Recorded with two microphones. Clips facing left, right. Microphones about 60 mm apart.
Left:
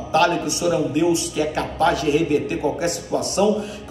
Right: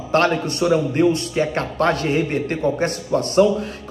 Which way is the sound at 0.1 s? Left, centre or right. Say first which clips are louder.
Even; right.